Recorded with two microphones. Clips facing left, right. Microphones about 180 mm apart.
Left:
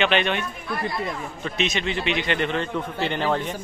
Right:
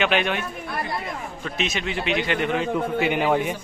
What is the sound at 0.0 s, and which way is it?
A man's voice, 5° right (ahead or behind).